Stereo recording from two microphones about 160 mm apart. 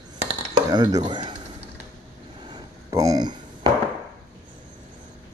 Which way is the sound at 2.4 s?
25° right (ahead or behind).